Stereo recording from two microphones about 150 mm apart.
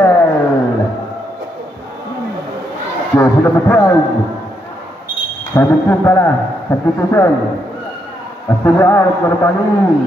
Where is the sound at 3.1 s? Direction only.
15° left (ahead or behind).